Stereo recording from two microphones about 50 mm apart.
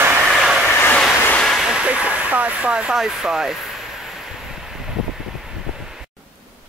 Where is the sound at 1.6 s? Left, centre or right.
Centre.